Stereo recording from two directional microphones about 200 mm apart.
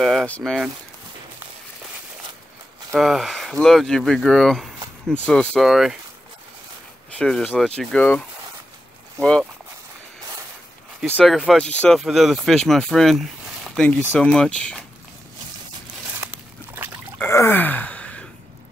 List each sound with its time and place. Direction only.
0.0 s speech: centre (ahead or behind)
2.9 s speech: centre (ahead or behind)
7.2 s speech: 5° left (ahead or behind)
9.2 s speech: 5° left (ahead or behind)
11.1 s speech: centre (ahead or behind)
16.2 s a sound: 10° right (ahead or behind)
17.2 s groan: 10° left (ahead or behind)